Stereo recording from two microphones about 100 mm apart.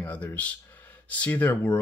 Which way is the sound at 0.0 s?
15° left (ahead or behind).